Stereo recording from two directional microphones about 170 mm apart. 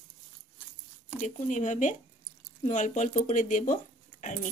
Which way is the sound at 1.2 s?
45° left (ahead or behind).